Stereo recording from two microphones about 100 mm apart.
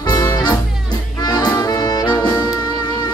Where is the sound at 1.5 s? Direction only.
35° left (ahead or behind).